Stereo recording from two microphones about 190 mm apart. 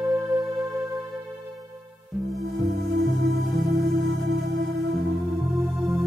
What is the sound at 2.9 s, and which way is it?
Music, 75° right (ahead or behind).